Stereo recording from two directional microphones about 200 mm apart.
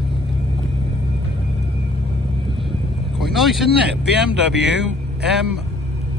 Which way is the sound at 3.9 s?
60° right (ahead or behind).